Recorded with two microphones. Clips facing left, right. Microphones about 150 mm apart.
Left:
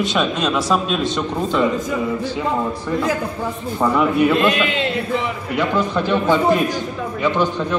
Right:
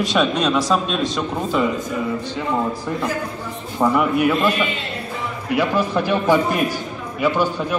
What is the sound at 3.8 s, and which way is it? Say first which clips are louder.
Speech: left 1 dB; 10° right (ahead or behind).